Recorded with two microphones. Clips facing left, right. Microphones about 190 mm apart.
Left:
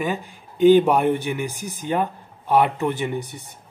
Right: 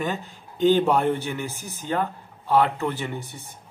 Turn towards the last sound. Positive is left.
turn(degrees=20)  # may be behind; listen again after turning